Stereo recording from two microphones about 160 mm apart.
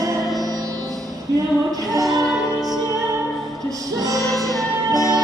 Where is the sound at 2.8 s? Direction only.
20° right (ahead or behind).